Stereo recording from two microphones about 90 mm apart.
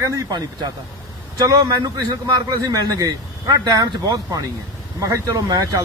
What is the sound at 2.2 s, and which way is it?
Speech, 40° right (ahead or behind).